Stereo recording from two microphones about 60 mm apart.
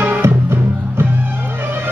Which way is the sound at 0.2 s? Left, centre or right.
Right.